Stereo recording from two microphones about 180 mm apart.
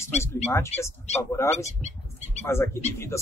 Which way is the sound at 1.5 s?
40° left (ahead or behind).